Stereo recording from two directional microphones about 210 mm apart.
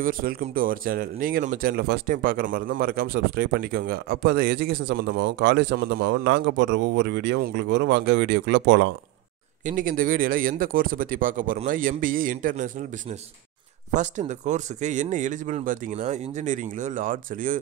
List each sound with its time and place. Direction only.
0.0 s speech: 45° right (ahead or behind); by 8.9 s 60° right (ahead or behind)
9.7 s speech: 40° right (ahead or behind)
13.9 s speech: 35° right (ahead or behind)